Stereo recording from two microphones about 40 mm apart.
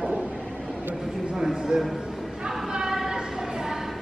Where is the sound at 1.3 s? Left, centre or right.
Centre.